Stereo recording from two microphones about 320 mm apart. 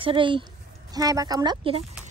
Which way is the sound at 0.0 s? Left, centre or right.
Centre.